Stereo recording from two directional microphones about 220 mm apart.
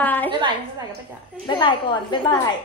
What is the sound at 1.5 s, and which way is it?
Speech, 20° left (ahead or behind).